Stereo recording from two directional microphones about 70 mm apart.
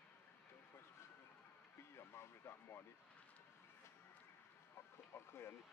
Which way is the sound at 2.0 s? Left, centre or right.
Left.